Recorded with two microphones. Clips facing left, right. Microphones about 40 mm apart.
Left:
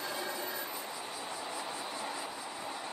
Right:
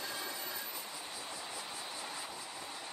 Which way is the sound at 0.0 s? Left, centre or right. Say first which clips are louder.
Left 4 dB; centre.